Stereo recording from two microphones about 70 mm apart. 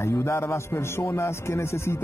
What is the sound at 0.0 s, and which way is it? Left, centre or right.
Speech, left.